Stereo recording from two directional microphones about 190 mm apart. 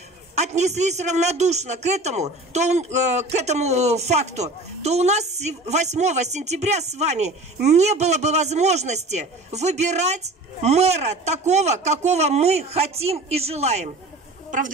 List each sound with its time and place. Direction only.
0.4 s a woman's voice: 35° right (ahead or behind)